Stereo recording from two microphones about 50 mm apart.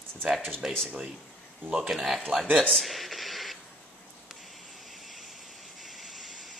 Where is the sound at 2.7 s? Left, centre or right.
Centre.